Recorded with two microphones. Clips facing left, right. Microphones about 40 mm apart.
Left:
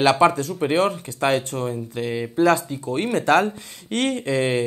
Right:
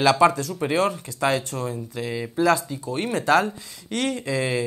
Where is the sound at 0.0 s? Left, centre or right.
Left.